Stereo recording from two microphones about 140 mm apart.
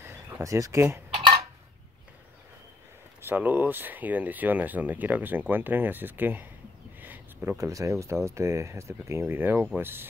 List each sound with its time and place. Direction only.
0.0 s speech: 20° right (ahead or behind)
3.2 s speech: 15° right (ahead or behind)
7.0 s a sound: 15° right (ahead or behind)
7.5 s speech: 25° right (ahead or behind)